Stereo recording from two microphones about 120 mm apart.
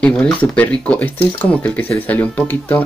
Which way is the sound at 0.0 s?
10° left (ahead or behind).